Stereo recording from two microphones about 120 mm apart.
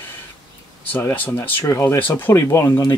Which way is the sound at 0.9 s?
15° left (ahead or behind).